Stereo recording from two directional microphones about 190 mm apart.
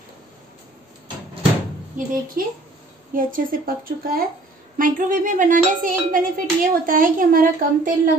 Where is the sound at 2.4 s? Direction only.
50° right (ahead or behind).